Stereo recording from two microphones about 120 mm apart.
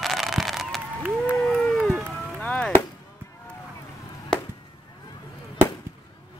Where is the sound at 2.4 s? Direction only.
10° left (ahead or behind).